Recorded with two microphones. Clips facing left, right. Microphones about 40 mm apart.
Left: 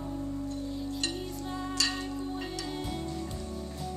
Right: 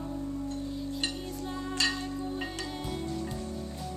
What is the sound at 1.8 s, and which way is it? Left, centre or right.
Music, right.